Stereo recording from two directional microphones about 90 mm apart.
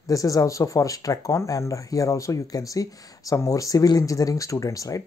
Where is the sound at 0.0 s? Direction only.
40° left (ahead or behind).